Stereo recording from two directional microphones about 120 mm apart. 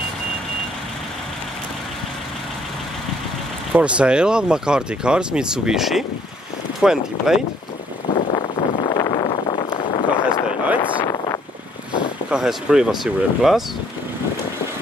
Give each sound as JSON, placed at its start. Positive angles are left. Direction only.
{"t": 3.7, "sound": "speech", "side_deg": -10}
{"t": 8.1, "sound": "a sound", "side_deg": 40}
{"t": 12.3, "sound": "speech", "side_deg": -5}